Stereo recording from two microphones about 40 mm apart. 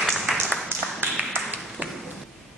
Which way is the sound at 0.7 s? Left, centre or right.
Right.